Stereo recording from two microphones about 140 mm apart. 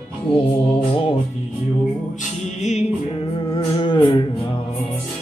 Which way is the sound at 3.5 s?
40° left (ahead or behind).